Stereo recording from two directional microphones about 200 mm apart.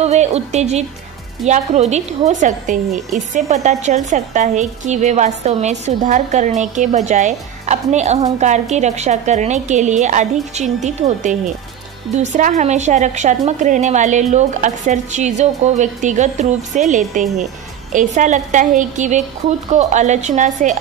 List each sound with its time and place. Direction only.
0.0 s a woman's voice: 35° right (ahead or behind)